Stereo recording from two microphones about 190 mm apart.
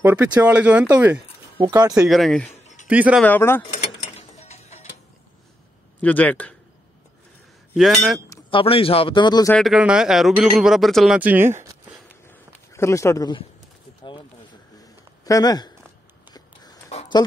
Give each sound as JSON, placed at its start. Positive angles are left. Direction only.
{"t": 0.0, "sound": "speech", "side_deg": -10}
{"t": 2.0, "sound": "speech", "side_deg": 0}
{"t": 2.5, "sound": "a sound", "side_deg": 40}
{"t": 2.9, "sound": "speech", "side_deg": -5}
{"t": 3.3, "sound": "speech", "side_deg": 10}
{"t": 4.0, "sound": "tick-tock", "side_deg": 35}
{"t": 5.9, "sound": "speech", "side_deg": 10}
{"t": 7.7, "sound": "speech", "side_deg": 0}
{"t": 8.3, "sound": "a man's voice", "side_deg": 25}
{"t": 9.5, "sound": "speech", "side_deg": 0}
{"t": 12.3, "sound": "a sound", "side_deg": 15}
{"t": 15.2, "sound": "speech", "side_deg": 20}
{"t": 16.3, "sound": "a sound", "side_deg": 20}